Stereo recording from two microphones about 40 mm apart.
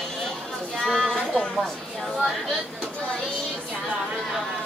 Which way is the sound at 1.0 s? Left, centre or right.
Centre.